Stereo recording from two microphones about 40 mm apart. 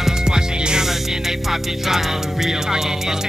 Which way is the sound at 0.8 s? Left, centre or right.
Centre.